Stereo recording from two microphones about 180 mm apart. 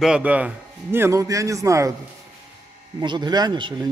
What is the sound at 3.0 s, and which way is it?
Speech, 25° right (ahead or behind).